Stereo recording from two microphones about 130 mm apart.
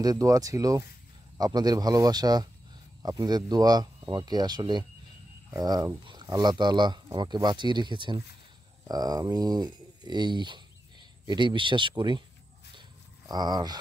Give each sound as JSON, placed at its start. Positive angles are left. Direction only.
{"t": 0.0, "sound": "speech", "side_deg": -25}
{"t": 13.3, "sound": "speech", "side_deg": -35}